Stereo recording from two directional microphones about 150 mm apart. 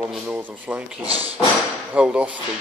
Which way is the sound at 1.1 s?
40° right (ahead or behind).